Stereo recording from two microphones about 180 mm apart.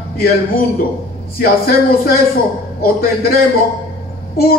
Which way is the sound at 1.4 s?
55° left (ahead or behind).